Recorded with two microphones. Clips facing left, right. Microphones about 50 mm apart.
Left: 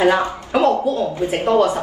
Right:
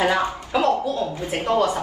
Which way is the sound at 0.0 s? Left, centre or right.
Left.